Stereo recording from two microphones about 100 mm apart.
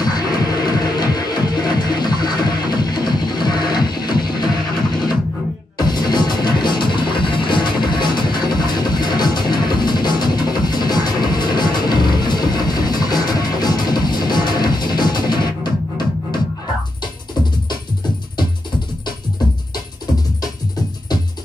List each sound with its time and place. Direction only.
0.0 s music: 40° left (ahead or behind)
5.8 s music: 45° left (ahead or behind)